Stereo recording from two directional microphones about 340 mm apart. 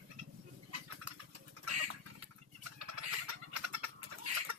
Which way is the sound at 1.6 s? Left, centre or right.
Right.